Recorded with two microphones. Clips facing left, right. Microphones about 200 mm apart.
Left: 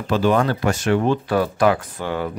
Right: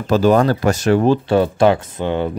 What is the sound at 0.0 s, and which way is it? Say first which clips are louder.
Speech: right 5 dB; 40° right (ahead or behind).